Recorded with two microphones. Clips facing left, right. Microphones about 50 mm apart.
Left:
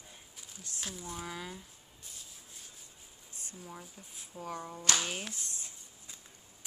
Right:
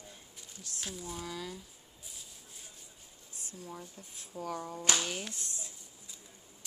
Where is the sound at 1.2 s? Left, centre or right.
Left.